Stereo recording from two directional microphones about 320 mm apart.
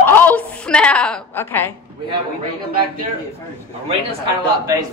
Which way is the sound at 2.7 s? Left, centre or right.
Right.